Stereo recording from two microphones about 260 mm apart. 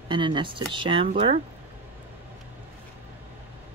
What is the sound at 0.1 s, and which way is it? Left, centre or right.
Speech, centre.